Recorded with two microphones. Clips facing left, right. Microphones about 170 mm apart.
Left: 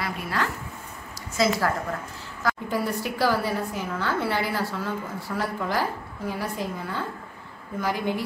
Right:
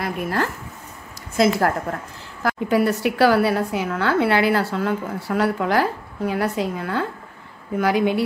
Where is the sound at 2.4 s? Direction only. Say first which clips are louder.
Right 7 dB; 65° right (ahead or behind).